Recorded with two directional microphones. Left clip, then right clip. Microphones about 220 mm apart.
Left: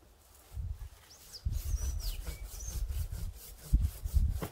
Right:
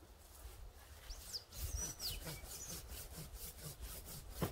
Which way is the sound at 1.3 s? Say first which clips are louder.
Right 2 dB; 45° right (ahead or behind).